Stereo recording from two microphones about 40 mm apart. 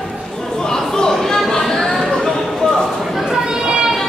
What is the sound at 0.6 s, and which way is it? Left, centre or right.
Chatter, centre.